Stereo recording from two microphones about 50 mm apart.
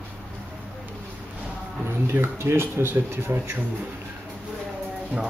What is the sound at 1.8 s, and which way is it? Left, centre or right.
Speech, right.